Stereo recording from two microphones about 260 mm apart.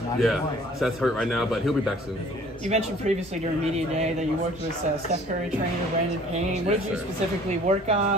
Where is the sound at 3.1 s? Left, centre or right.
Right.